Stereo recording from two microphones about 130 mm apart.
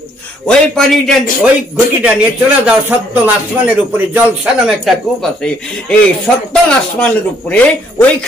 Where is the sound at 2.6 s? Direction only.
10° right (ahead or behind).